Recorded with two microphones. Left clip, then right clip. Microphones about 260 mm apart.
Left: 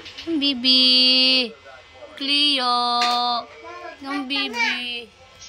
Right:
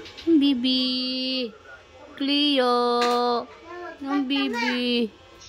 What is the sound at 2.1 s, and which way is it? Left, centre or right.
A woman's voice, centre.